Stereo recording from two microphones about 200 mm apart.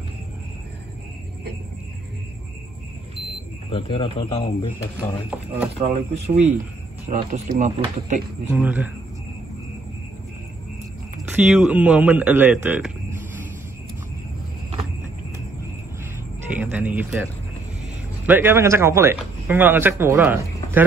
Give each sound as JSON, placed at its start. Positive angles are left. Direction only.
{"t": 3.7, "sound": "a man's voice", "side_deg": 25}
{"t": 5.8, "sound": "speech", "side_deg": -35}
{"t": 8.5, "sound": "speech", "side_deg": -10}
{"t": 11.2, "sound": "speech", "side_deg": -5}
{"t": 16.4, "sound": "speech", "side_deg": -10}